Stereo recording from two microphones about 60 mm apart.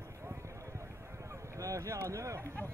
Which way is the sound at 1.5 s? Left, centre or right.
Right.